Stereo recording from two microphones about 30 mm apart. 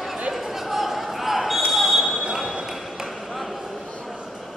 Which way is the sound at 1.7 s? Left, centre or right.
Centre.